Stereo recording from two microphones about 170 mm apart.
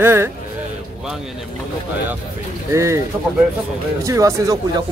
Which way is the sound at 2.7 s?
15° right (ahead or behind).